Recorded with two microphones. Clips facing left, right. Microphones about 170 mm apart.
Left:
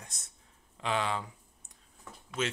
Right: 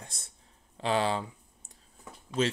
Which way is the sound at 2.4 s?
35° right (ahead or behind).